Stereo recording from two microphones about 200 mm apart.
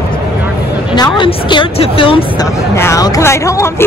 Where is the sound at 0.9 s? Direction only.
25° left (ahead or behind).